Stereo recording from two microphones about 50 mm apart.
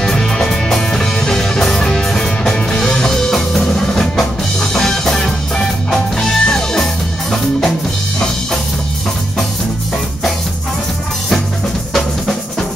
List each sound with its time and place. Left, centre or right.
0.0 s music: centre
11.9 s drum: centre